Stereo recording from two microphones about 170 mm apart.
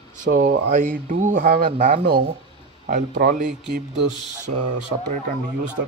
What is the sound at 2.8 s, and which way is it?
Speech, 50° right (ahead or behind).